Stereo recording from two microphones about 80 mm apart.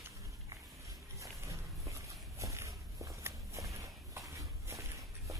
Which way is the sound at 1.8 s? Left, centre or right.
Right.